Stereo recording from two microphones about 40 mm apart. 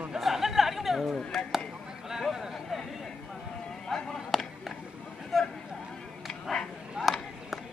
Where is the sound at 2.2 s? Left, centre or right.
Centre.